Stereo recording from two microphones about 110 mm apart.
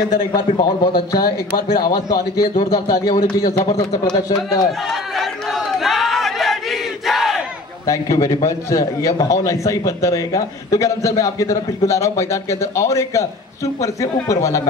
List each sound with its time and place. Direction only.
0.3 s a man's voice: 40° left (ahead or behind)
5.1 s battle cry: centre (ahead or behind)
7.8 s a man's voice: 30° left (ahead or behind)